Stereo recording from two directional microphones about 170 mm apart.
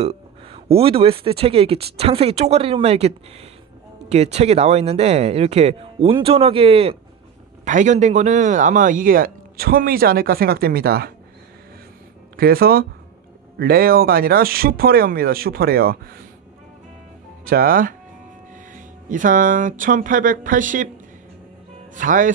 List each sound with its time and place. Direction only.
0.0 s speech: 35° right (ahead or behind)
7.6 s a man's voice: 45° right (ahead or behind); by 11.1 s 65° right (ahead or behind)
12.4 s a man's voice: 65° right (ahead or behind)
17.5 s a man's voice: 60° right (ahead or behind)
21.9 s speech: 50° right (ahead or behind)